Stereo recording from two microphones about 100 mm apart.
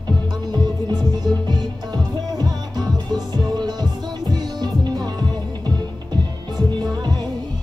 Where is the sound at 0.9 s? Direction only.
45° right (ahead or behind).